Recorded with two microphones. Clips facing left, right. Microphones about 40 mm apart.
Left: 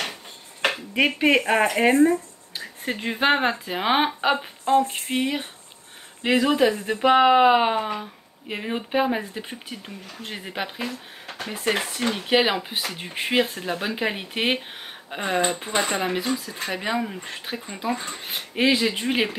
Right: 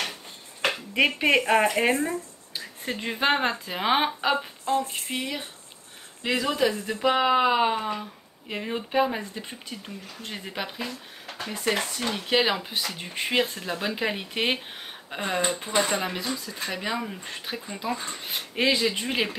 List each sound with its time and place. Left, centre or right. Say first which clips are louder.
0.9 s speech: left 2 dB; centre